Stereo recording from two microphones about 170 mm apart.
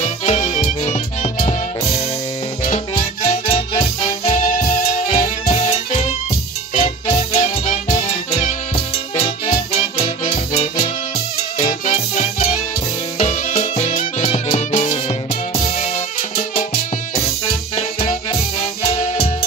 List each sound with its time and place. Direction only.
0.0 s music: 40° left (ahead or behind)
3.4 s music: 40° left (ahead or behind)
4.4 s music: 50° left (ahead or behind)
5.0 s music: 40° left (ahead or behind)
17.7 s music: 40° left (ahead or behind)